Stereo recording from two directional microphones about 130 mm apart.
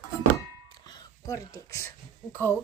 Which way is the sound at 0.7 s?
30° left (ahead or behind).